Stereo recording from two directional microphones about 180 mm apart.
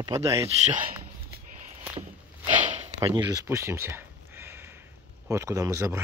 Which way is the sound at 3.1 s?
20° right (ahead or behind).